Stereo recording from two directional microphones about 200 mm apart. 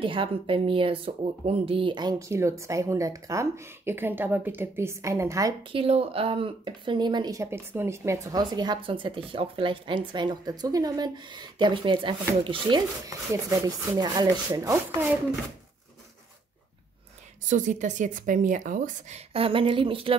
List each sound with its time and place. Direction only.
0.0 s speech: 25° right (ahead or behind)
17.5 s speech: 40° right (ahead or behind)